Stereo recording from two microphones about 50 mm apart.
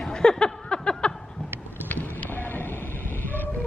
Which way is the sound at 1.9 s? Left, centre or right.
Left.